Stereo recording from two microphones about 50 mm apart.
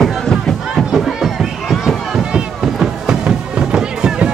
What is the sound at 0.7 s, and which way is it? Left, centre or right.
Run, centre.